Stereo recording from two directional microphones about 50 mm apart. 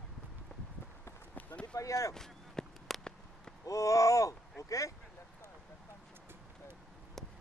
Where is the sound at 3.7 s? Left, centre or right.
Left.